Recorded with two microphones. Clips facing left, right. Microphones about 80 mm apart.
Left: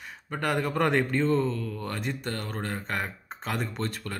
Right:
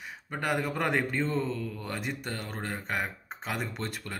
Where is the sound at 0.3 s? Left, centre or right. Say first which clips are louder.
Left 3 dB; centre.